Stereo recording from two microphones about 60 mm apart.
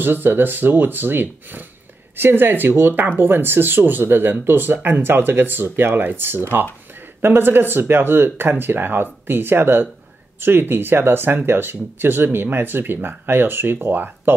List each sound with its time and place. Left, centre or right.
0.0 s speech: right